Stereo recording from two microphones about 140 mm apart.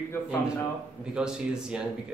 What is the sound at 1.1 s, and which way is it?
Speech, 5° right (ahead or behind).